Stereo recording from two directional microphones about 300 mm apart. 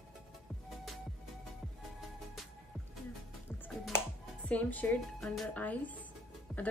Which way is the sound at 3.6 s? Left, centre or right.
Centre.